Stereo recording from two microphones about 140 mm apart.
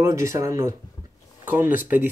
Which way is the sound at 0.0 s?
20° right (ahead or behind).